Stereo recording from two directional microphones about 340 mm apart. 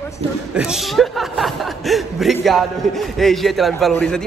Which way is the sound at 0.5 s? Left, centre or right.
Centre.